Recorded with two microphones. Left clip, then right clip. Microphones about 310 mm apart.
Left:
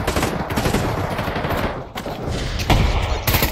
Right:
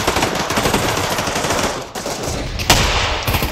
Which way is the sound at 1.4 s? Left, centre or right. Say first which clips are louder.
Right 4 dB; right.